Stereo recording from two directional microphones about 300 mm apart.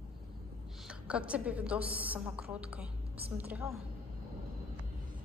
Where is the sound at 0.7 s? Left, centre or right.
Centre.